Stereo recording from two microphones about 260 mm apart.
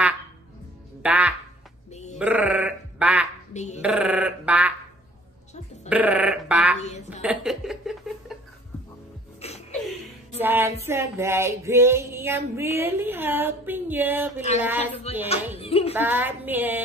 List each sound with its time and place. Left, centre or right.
1.0 s music: centre
1.9 s sheep: left
2.1 s sheep: centre
3.5 s music: left
3.8 s a sound: centre
5.9 s a sound: centre
6.8 s music: left
7.2 s chuckle: centre
9.4 s chuckle: left
10.4 s female singing: centre
15.1 s music: left
15.9 s female singing: centre